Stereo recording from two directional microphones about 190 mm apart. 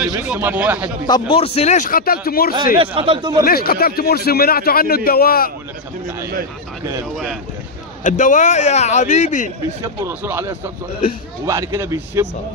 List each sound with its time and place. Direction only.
0.0 s speech: 5° right (ahead or behind)
1.3 s a man's voice: 30° left (ahead or behind); by 2.5 s 50° left (ahead or behind)
2.8 s speech: 25° right (ahead or behind)
3.4 s a man's voice: 55° left (ahead or behind)
8.0 s a man's voice: 40° left (ahead or behind)
10.0 s speech: 15° right (ahead or behind)